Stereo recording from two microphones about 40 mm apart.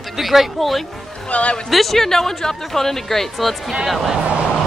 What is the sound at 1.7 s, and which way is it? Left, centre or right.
Speech, centre.